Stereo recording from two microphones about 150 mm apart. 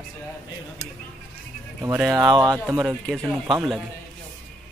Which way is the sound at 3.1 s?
Centre (ahead or behind).